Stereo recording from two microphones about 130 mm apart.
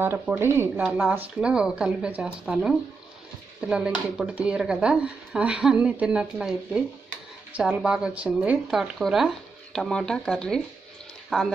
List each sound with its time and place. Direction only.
0.0 s speech: 15° right (ahead or behind)